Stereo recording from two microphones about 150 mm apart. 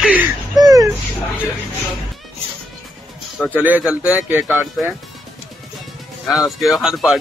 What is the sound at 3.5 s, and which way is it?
Speech, 10° right (ahead or behind).